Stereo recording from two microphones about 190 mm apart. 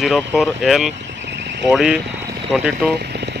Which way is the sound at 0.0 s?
Centre (ahead or behind).